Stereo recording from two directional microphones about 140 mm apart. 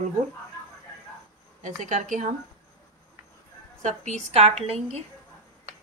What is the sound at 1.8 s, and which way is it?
Speech, 65° right (ahead or behind).